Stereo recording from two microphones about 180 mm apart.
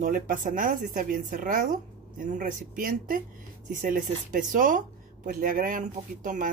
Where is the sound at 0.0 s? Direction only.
45° right (ahead or behind).